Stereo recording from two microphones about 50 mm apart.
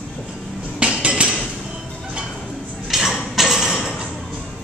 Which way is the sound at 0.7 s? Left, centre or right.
Right.